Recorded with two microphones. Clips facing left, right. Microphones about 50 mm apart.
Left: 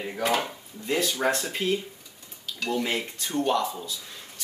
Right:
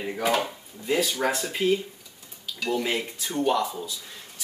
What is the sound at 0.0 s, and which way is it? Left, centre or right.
Speech, centre.